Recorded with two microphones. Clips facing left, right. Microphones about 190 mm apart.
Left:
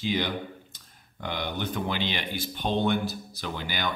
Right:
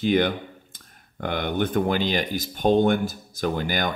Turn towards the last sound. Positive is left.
turn(degrees=-45)  # may be behind; listen again after turning